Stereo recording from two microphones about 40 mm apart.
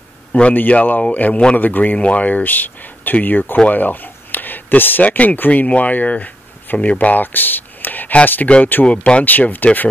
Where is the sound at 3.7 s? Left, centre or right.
Left.